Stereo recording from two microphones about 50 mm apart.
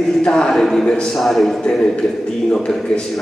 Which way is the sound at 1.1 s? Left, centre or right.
Centre.